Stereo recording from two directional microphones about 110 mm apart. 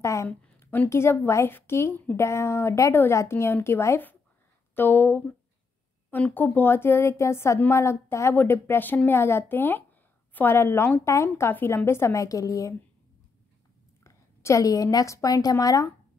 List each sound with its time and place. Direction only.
0.0 s a woman's voice: 25° left (ahead or behind)
0.3 s speech: 15° left (ahead or behind)
14.0 s a woman's voice: 30° left (ahead or behind)